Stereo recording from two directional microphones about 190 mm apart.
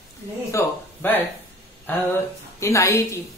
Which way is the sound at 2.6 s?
15° left (ahead or behind).